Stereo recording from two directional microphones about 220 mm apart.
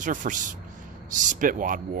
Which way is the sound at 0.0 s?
35° right (ahead or behind).